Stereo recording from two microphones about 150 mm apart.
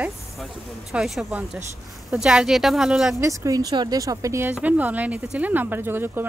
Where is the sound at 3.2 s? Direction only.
20° right (ahead or behind).